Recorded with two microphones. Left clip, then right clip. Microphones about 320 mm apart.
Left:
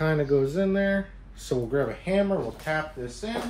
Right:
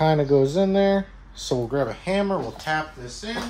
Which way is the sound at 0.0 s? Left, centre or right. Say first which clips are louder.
Right 5 dB; centre.